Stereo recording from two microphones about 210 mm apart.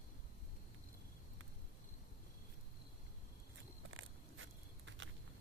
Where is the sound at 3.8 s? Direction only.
70° right (ahead or behind).